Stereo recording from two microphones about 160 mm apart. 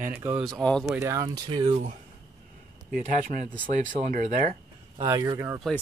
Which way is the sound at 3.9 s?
55° right (ahead or behind).